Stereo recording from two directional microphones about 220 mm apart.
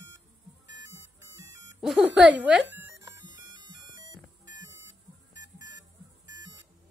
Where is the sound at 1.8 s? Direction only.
5° right (ahead or behind).